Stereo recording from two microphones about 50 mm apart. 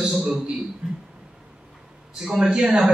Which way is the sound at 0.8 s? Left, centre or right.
Centre.